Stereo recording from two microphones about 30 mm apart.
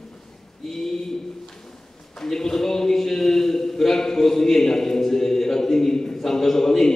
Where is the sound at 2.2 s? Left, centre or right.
Centre.